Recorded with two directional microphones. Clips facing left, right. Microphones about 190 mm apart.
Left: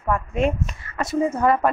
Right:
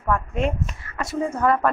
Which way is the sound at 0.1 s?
10° left (ahead or behind).